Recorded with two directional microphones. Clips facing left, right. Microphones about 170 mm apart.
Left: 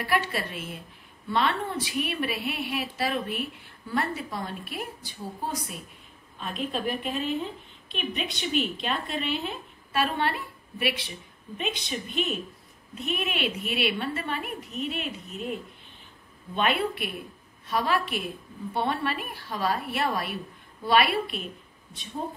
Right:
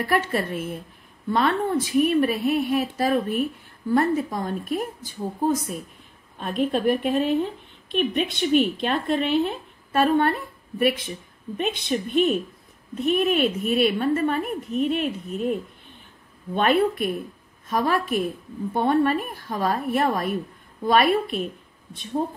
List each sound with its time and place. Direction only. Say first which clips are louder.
0.0 s a woman's voice: right 5 dB; 40° right (ahead or behind)